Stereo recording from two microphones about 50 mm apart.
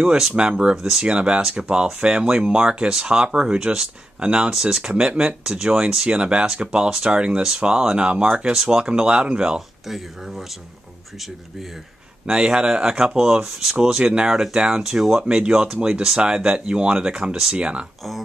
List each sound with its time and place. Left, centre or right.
0.4 s speech: centre
4.2 s speech: right
4.5 s speech: centre
12.3 s speech: centre
15.2 s speech: centre